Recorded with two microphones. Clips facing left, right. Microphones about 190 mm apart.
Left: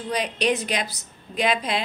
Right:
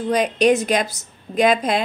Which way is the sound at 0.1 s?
45° right (ahead or behind).